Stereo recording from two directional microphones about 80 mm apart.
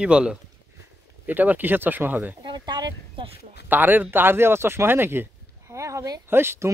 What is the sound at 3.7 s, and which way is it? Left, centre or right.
Speech, right.